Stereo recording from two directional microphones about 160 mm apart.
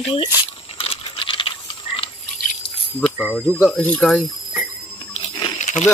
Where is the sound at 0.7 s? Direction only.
35° left (ahead or behind).